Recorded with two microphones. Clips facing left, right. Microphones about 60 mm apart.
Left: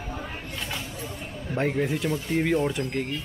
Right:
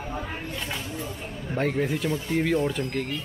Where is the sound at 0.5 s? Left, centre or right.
Centre.